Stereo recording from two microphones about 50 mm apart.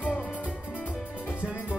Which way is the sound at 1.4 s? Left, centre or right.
Right.